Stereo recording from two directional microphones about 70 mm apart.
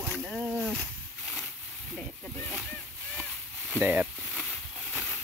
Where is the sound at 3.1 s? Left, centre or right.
Centre.